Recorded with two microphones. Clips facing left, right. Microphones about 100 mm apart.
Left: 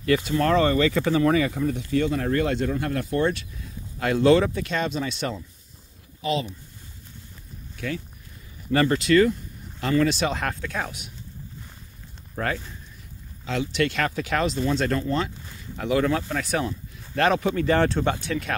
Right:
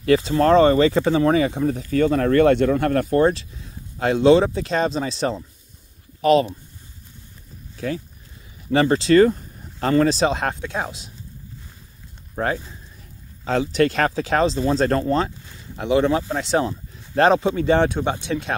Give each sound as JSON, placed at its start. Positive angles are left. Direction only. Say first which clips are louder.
{"t": 0.0, "sound": "speech", "louder": "right 5 dB", "side_deg": -30}
{"t": 3.2, "sound": "speech", "louder": "right 5 dB", "side_deg": -35}
{"t": 4.0, "sound": "speech", "louder": "right 4 dB", "side_deg": -25}
{"t": 6.2, "sound": "speech", "louder": "right 10 dB", "side_deg": -55}
{"t": 7.7, "sound": "a sound", "louder": "right 4 dB", "side_deg": -30}
{"t": 8.7, "sound": "speech", "louder": "right 4 dB", "side_deg": -25}
{"t": 10.3, "sound": "speech", "louder": "right 4 dB", "side_deg": -20}
{"t": 12.4, "sound": "speech", "louder": "right 4 dB", "side_deg": -30}
{"t": 13.5, "sound": "speech", "louder": "right 6 dB", "side_deg": -40}
{"t": 15.8, "sound": "speech", "louder": "right 4 dB", "side_deg": -25}